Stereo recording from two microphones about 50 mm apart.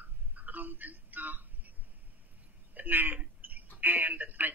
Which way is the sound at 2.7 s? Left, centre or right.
Right.